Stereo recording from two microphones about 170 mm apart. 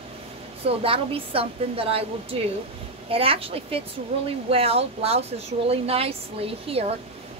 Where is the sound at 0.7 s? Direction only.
35° right (ahead or behind).